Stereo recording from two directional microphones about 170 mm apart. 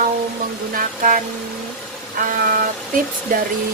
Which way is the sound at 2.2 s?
55° right (ahead or behind).